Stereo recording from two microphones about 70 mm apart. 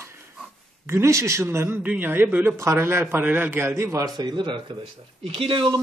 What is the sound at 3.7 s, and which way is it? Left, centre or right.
Speech, right.